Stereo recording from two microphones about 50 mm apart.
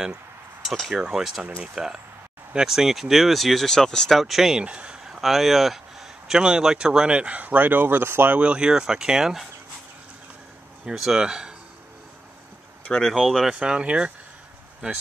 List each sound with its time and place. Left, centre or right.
0.9 s speech: centre
4.6 s a sound: right
5.0 s speech: centre; by 8.4 s right
8.4 s speech: right
10.9 s speech: centre
13.1 s speech: centre
13.6 s speech: right